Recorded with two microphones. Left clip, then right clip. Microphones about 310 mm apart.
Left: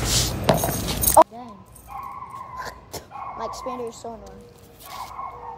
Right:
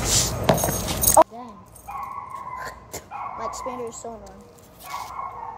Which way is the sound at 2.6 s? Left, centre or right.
Centre.